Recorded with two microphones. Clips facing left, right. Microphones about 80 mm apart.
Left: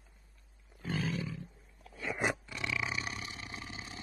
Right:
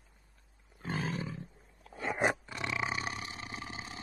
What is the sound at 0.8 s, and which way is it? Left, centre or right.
Roaring cats, right.